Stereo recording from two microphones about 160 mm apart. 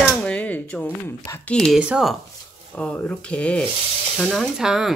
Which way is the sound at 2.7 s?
5° left (ahead or behind).